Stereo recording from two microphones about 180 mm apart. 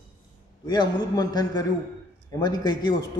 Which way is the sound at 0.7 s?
20° left (ahead or behind).